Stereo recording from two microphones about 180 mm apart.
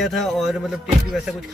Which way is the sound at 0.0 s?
Centre (ahead or behind).